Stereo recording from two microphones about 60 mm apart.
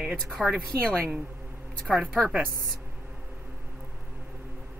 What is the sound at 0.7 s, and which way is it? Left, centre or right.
Speech, centre.